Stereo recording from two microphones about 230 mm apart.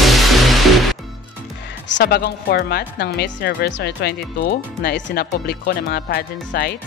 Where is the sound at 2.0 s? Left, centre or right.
Left.